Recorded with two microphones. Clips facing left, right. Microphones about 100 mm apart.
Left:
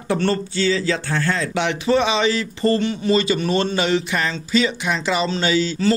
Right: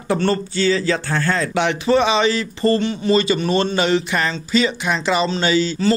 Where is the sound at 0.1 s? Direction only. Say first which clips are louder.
Right 1 dB; 40° right (ahead or behind).